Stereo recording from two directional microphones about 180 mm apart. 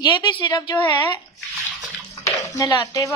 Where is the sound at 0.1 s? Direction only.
25° left (ahead or behind).